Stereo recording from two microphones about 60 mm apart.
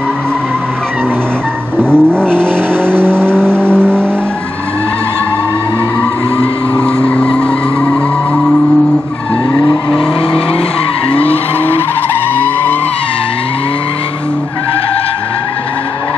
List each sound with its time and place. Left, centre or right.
1.8 s vehicle: centre
2.9 s vehicle: right
3.2 s vehicle: centre
6.8 s vehicle: centre